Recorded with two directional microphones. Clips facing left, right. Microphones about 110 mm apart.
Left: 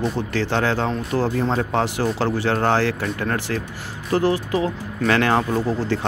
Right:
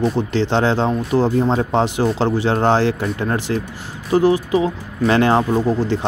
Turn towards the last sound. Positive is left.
turn(degrees=-15)  # may be behind; listen again after turning